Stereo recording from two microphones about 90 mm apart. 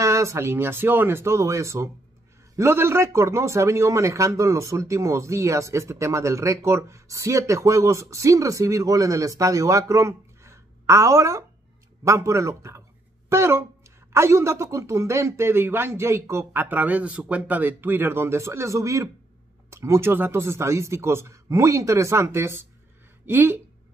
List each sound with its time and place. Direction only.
0.0 s a man's voice: 35° right (ahead or behind)